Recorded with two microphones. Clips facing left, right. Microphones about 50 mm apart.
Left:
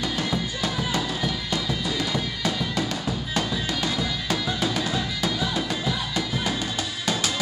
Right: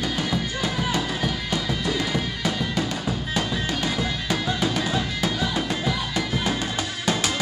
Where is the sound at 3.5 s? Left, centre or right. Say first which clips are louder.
Right 1 dB; right.